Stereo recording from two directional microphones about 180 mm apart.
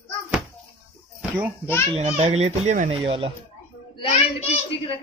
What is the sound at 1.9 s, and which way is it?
Speech, 40° right (ahead or behind).